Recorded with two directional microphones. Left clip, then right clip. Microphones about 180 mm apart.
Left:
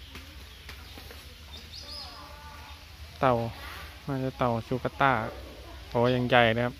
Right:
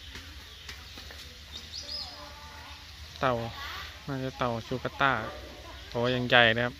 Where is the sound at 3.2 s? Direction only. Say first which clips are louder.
Left 3 dB; 10° left (ahead or behind).